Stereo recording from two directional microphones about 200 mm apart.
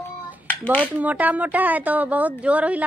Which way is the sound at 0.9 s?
10° right (ahead or behind).